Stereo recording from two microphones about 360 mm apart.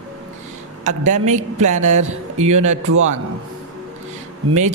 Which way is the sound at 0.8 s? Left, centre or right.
Centre.